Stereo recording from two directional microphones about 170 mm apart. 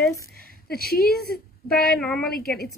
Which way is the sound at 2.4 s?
65° left (ahead or behind).